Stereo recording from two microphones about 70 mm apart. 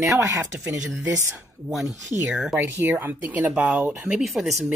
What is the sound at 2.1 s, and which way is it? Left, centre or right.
Speech, right.